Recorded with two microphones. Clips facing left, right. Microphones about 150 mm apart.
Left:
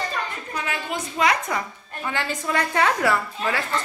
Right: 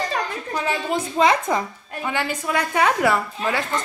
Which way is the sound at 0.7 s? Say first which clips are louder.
Right 7 dB; 30° right (ahead or behind).